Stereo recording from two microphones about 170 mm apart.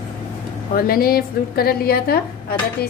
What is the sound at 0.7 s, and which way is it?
A woman's voice, 60° left (ahead or behind).